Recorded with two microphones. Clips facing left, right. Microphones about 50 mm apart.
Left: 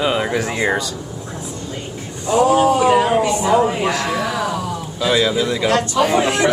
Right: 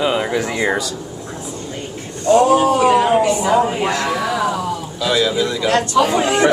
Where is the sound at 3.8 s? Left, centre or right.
Right.